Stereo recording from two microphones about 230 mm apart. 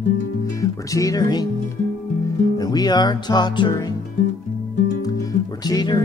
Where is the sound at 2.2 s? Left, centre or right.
Centre.